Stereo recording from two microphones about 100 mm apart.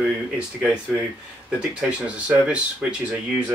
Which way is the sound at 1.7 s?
10° right (ahead or behind).